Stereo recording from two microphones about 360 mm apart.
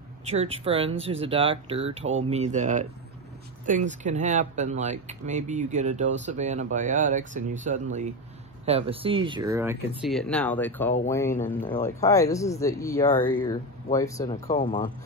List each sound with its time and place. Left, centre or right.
0.3 s speech: centre